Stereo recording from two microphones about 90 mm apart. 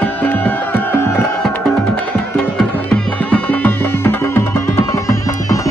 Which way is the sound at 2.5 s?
15° left (ahead or behind).